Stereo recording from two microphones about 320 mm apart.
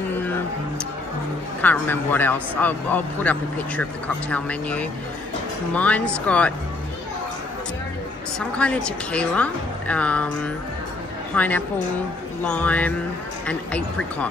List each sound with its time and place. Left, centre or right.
1.6 s a man's voice: centre
8.4 s a man's voice: centre